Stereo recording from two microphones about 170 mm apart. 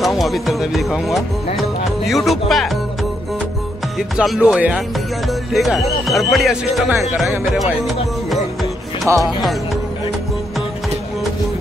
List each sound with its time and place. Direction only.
0.0 s speech: centre (ahead or behind)
4.2 s speech: centre (ahead or behind)
9.1 s music: 15° right (ahead or behind)